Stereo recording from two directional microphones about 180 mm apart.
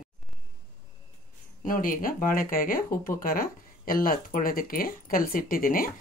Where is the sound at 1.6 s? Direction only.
50° left (ahead or behind).